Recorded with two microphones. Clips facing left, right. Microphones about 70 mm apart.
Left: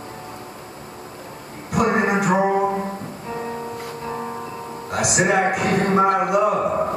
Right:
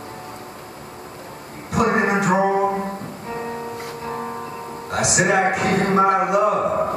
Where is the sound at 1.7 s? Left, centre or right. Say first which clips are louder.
Even; centre.